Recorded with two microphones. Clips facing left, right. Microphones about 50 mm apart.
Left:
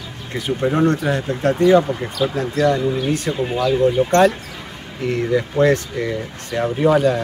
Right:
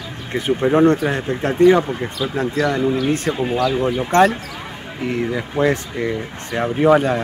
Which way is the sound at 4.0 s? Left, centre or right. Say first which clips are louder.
Even; right.